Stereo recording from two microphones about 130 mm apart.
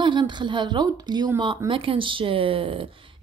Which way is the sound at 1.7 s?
45° right (ahead or behind).